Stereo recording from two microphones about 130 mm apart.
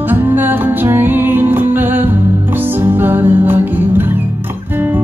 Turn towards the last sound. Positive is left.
turn(degrees=-15)  # may be behind; listen again after turning